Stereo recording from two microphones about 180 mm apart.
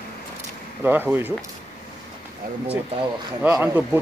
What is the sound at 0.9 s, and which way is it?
Speech, 10° right (ahead or behind).